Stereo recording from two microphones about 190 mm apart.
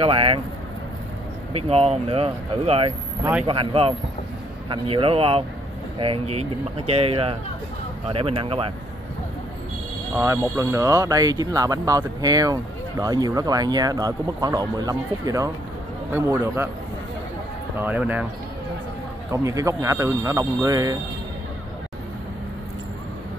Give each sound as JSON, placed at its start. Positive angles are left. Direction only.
{"t": 0.0, "sound": "speech", "side_deg": -30}
{"t": 1.5, "sound": "speech", "side_deg": -30}
{"t": 10.1, "sound": "speech", "side_deg": -15}
{"t": 17.7, "sound": "speech", "side_deg": -10}
{"t": 19.3, "sound": "speech", "side_deg": -15}